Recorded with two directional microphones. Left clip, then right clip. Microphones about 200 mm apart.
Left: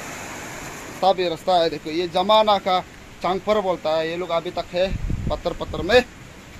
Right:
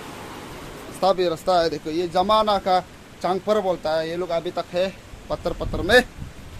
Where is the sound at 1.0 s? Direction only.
20° right (ahead or behind).